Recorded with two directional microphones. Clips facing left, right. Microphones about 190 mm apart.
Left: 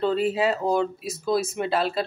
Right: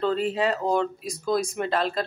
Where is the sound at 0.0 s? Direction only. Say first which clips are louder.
Left 2 dB; 5° left (ahead or behind).